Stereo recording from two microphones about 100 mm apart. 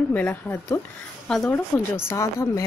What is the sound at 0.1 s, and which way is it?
Speech, 15° left (ahead or behind).